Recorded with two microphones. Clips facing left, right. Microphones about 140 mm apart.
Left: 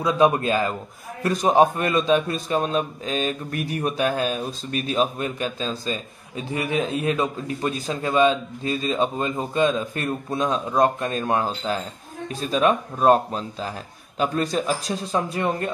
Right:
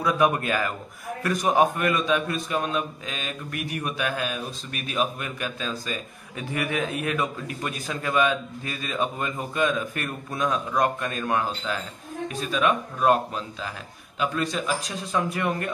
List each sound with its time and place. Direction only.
0.0 s a man's voice: 25° left (ahead or behind)